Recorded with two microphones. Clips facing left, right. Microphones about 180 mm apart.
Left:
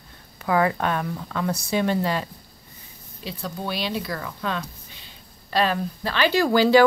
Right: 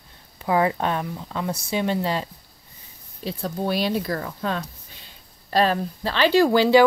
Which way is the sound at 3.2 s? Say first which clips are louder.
Right 5 dB; 40° right (ahead or behind).